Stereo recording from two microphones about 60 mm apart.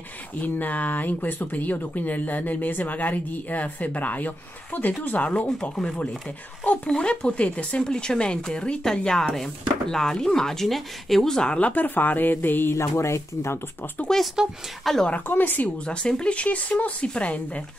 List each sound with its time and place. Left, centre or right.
0.4 s speech: left
12.7 s speech: left
14.4 s speech: centre
14.8 s a woman's voice: centre
15.2 s a woman's voice: left
15.9 s speech: centre